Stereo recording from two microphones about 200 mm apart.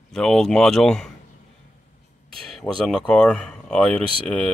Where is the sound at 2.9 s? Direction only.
5° left (ahead or behind).